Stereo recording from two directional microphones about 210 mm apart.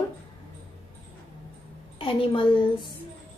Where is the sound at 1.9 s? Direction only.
25° left (ahead or behind).